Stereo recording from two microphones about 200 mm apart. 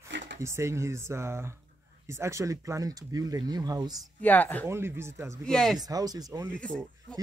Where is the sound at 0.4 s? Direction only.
15° right (ahead or behind).